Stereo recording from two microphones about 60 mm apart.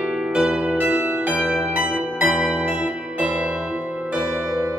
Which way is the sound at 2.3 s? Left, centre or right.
Centre.